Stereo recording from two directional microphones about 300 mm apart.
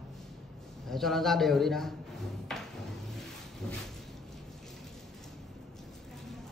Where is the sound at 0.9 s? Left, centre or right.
Centre.